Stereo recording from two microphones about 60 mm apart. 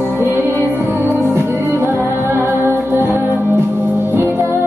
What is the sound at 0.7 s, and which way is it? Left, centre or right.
Music, right.